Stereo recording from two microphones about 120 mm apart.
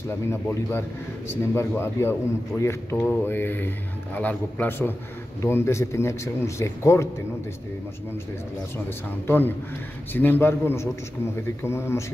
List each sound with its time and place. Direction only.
0.3 s a man's voice: 20° left (ahead or behind)
9.2 s a man's voice: 20° left (ahead or behind)